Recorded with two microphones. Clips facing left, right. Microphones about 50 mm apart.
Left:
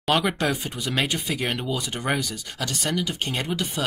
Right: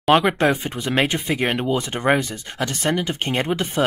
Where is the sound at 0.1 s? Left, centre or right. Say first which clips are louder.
Right 6 dB; right.